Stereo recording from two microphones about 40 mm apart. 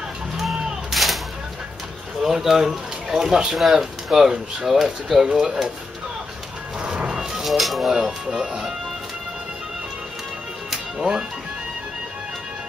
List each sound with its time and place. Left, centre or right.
0.4 s a sound: centre
2.2 s speech: centre
6.8 s music: right
7.4 s speech: centre
7.9 s speech: centre
11.0 s speech: centre